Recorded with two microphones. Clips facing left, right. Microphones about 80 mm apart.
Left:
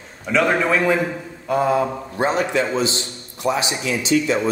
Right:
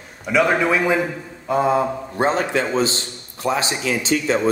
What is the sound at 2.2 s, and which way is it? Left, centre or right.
Speech, right.